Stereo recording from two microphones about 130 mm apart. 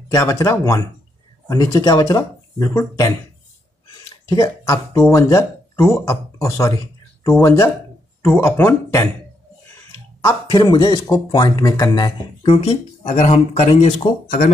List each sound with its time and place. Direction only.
0.1 s speech: 25° left (ahead or behind)
10.2 s speech: 30° left (ahead or behind)
13.0 s a man's voice: 60° left (ahead or behind)
14.2 s speech: 85° left